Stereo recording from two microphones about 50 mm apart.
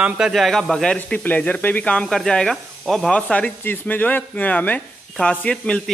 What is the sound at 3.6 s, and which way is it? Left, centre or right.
Speech, left.